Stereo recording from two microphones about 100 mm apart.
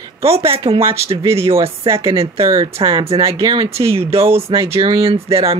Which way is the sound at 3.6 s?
30° right (ahead or behind).